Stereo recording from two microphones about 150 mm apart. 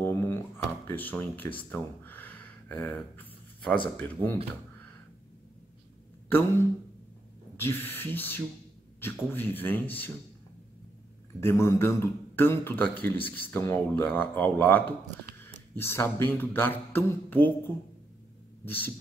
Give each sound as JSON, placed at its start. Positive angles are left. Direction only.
{"t": 0.0, "sound": "drawer open or close", "side_deg": 15}
{"t": 0.8, "sound": "a man's voice", "side_deg": 10}
{"t": 6.2, "sound": "a man's voice", "side_deg": 15}
{"t": 11.4, "sound": "a man's voice", "side_deg": 15}